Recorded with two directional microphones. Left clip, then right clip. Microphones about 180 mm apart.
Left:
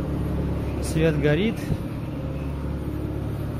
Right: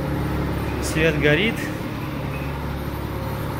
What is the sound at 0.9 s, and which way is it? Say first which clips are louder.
Speech: right 4 dB; 15° left (ahead or behind).